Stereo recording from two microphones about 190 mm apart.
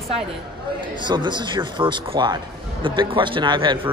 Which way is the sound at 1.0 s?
25° right (ahead or behind).